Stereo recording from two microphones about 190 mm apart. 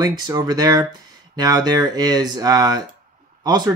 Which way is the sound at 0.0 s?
20° right (ahead or behind).